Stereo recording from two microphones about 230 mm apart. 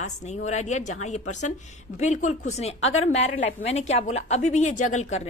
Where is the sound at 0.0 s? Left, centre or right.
Left.